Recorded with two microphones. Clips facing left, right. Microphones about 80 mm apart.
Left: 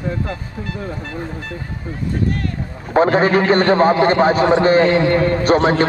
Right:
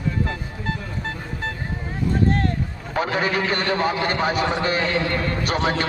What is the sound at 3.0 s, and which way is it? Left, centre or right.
A man's voice, left.